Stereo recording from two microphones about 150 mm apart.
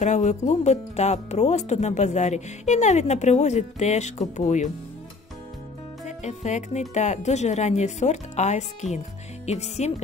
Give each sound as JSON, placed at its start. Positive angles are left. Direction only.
{"t": 0.0, "sound": "speech", "side_deg": 50}
{"t": 6.0, "sound": "speech", "side_deg": 50}